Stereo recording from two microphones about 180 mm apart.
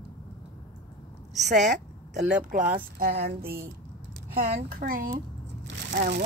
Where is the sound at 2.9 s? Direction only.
55° right (ahead or behind).